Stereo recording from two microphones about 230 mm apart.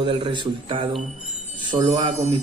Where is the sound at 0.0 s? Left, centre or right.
Right.